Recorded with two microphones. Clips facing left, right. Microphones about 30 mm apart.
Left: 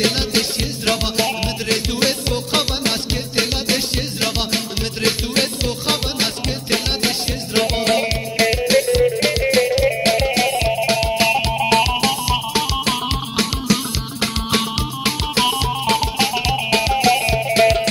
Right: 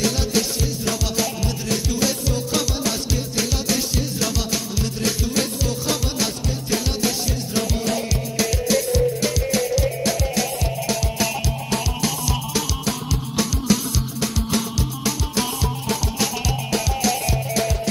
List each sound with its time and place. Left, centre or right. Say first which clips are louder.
0.0 s music: left 3 dB; left
14.2 s music: left 5 dB; left